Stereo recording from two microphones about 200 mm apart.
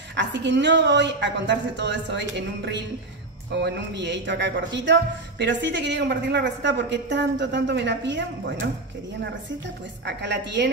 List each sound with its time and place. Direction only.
0.1 s a woman's voice: 60° right (ahead or behind)
10.0 s a woman's voice: 60° right (ahead or behind)